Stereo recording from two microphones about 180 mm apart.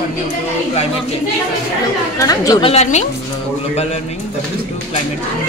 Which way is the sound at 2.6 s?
35° left (ahead or behind).